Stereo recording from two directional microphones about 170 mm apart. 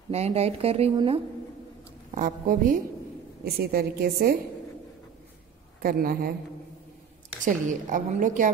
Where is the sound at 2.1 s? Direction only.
50° right (ahead or behind).